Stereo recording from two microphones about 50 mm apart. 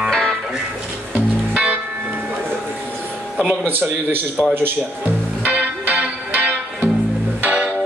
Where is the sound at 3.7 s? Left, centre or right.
Right.